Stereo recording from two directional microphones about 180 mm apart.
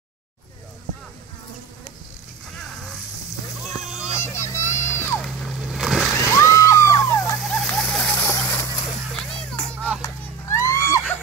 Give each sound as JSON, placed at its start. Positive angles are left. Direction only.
{"t": 2.5, "sound": "a sound", "side_deg": 5}
{"t": 4.1, "sound": "music", "side_deg": 15}
{"t": 5.2, "sound": "splash", "side_deg": 0}
{"t": 6.1, "sound": "slosh", "side_deg": 15}
{"t": 7.3, "sound": "splash", "side_deg": 0}
{"t": 10.0, "sound": "children playing", "side_deg": 15}